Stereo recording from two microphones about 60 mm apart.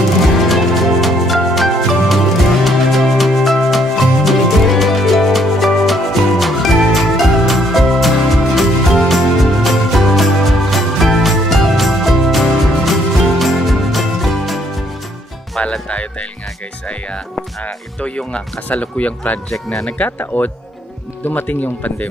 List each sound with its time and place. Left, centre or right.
0.4 s music: centre
15.6 s music: left
19.5 s speech: centre
20.1 s speech: left